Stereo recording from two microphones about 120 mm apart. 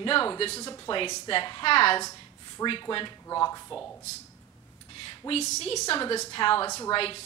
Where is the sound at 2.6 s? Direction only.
25° left (ahead or behind).